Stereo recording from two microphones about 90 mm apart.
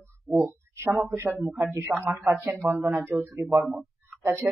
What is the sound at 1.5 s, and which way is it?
Speech, 30° right (ahead or behind).